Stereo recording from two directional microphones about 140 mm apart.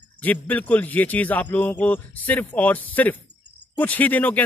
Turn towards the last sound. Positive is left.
turn(degrees=10)  # may be behind; listen again after turning